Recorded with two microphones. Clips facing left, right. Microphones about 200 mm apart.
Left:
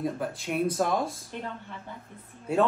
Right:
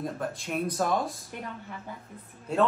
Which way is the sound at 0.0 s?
Centre (ahead or behind).